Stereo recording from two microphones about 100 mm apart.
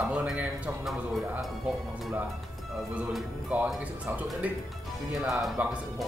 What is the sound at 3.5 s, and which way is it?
Speech, 10° right (ahead or behind).